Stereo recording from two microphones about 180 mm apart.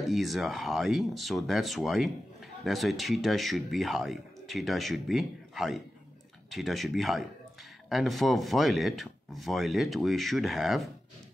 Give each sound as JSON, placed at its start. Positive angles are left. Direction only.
{"t": 0.0, "sound": "speech", "side_deg": 0}